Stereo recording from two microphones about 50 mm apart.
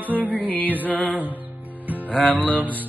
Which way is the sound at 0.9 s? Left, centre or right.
Left.